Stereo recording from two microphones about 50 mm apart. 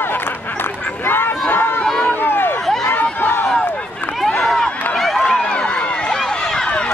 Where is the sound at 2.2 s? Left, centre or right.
Left.